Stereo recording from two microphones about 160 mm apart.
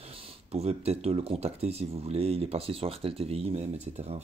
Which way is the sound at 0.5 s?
40° right (ahead or behind).